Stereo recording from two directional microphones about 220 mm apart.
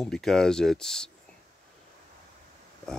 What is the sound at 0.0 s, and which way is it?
Speech, 5° left (ahead or behind).